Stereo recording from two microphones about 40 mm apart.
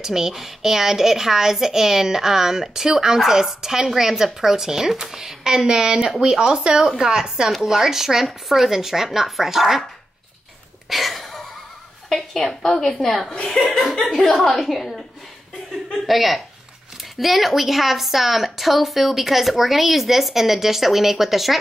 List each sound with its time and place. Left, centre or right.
0.0 s speech: centre
10.9 s a sound: centre
12.1 s a woman's voice: centre
13.5 s a woman's voice: centre
16.1 s a woman's voice: centre